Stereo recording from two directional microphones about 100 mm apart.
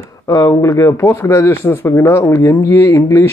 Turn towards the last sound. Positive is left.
turn(degrees=30)  # may be behind; listen again after turning